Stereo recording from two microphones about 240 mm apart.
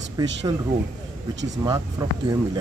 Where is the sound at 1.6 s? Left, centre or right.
Centre.